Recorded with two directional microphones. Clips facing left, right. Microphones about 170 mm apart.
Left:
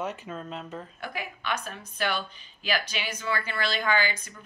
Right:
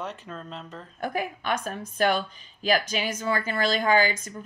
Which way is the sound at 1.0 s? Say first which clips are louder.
Right 8 dB; 45° right (ahead or behind).